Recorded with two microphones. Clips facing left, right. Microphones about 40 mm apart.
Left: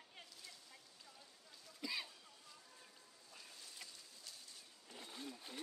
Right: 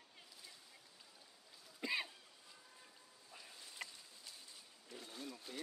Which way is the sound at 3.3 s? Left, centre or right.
Centre.